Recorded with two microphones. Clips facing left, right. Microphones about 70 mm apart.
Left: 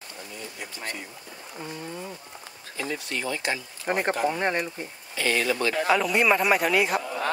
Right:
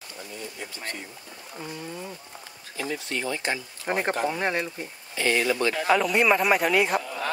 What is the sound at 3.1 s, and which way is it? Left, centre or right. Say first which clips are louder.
Speech: even; right.